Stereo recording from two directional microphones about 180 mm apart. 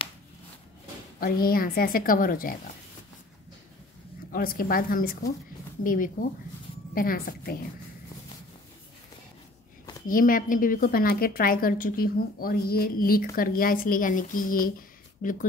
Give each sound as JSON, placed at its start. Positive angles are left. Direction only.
{"t": 1.2, "sound": "a woman's voice", "side_deg": 55}
{"t": 4.3, "sound": "a woman's voice", "side_deg": 55}
{"t": 10.0, "sound": "a woman's voice", "side_deg": 50}